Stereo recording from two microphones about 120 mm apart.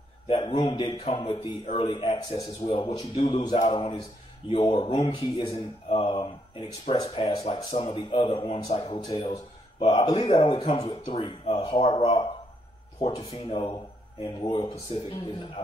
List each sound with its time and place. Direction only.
0.5 s a man's voice: 60° left (ahead or behind)
0.7 s speech: 45° left (ahead or behind)
5.9 s speech: 55° left (ahead or behind)
9.8 s speech: 35° left (ahead or behind)
10.3 s speech: 55° left (ahead or behind)
13.1 s speech: 30° left (ahead or behind)
13.4 s speech: 50° left (ahead or behind)